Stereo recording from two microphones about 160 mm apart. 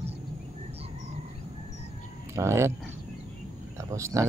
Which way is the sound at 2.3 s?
15° right (ahead or behind).